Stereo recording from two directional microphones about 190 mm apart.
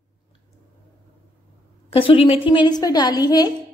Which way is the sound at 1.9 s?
30° left (ahead or behind).